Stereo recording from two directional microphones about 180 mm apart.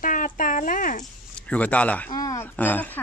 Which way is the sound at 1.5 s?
5° left (ahead or behind).